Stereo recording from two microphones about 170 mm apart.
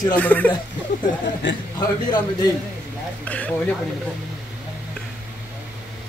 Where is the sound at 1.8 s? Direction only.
25° left (ahead or behind).